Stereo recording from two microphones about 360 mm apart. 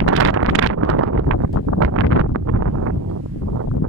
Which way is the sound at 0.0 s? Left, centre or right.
Right.